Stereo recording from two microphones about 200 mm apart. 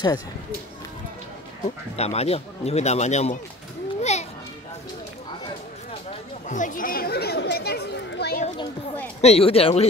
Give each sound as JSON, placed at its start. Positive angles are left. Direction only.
{"t": 2.0, "sound": "a man's voice", "side_deg": 30}
{"t": 4.0, "sound": "children playing", "side_deg": 35}
{"t": 6.0, "sound": "chatter", "side_deg": 40}
{"t": 9.2, "sound": "speech", "side_deg": 30}